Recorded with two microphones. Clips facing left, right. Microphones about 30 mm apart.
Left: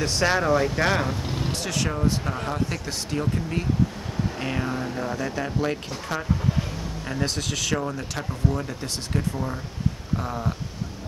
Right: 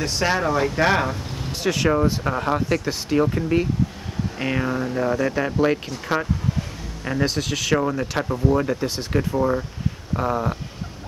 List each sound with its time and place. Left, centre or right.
0.0 s speech: centre; by 6.2 s right
7.1 s speech: centre
7.7 s speech: centre
8.8 s speech: centre